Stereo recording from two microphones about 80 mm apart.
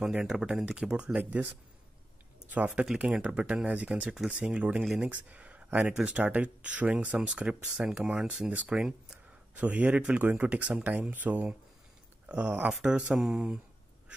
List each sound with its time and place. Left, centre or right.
0.1 s speech: centre
2.5 s speech: centre